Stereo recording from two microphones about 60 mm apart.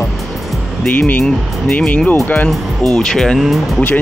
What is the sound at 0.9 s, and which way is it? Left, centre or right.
Speech, left.